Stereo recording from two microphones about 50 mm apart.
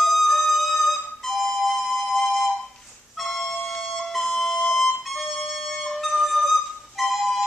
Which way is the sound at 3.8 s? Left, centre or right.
Centre.